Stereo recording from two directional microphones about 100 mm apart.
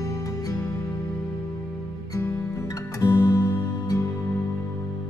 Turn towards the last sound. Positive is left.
turn(degrees=30)  # may be behind; listen again after turning